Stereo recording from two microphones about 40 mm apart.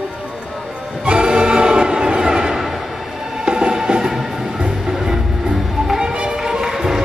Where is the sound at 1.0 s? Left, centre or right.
Right.